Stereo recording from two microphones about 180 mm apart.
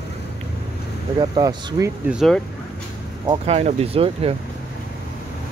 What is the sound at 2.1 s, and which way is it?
Speech, centre (ahead or behind).